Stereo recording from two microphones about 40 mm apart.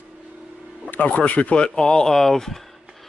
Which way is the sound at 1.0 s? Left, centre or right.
Left.